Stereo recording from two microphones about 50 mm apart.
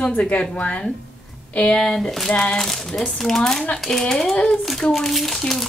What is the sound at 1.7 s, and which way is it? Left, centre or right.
Speech, centre.